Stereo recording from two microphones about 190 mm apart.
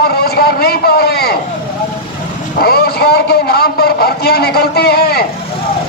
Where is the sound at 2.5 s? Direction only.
55° left (ahead or behind).